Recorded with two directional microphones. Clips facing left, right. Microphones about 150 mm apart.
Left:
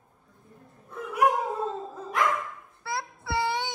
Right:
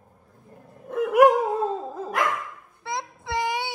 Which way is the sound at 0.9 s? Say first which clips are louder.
Right 10 dB; 90° right.